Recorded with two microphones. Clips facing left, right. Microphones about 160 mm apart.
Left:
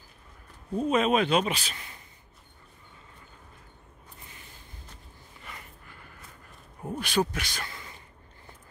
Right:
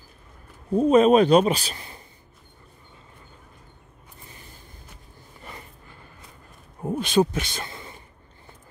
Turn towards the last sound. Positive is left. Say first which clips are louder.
# right 3 dB
turn(degrees=-25)  # may be behind; listen again after turning